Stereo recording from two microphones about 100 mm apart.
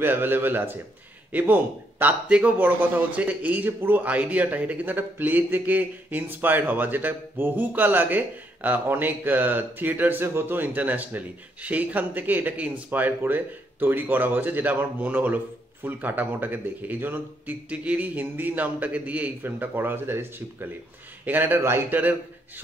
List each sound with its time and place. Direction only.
0.0 s a man's voice: 20° right (ahead or behind)